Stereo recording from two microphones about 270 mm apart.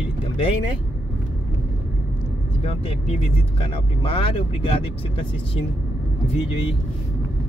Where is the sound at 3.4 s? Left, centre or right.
Left.